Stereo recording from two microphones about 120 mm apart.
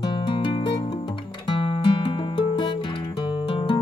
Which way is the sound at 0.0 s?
40° left (ahead or behind).